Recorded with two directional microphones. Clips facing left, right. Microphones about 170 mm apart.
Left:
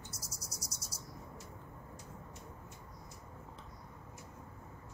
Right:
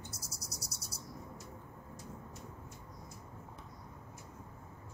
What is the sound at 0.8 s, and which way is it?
Bird, 65° right (ahead or behind).